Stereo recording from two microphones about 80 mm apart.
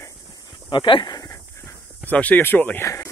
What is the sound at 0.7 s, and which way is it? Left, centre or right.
Speech, left.